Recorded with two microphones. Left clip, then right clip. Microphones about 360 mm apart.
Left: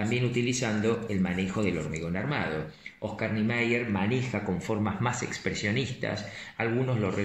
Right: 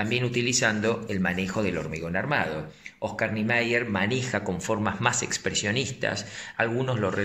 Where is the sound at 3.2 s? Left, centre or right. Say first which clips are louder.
Right 4 dB; right.